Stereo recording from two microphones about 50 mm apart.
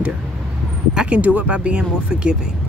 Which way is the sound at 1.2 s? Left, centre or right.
Right.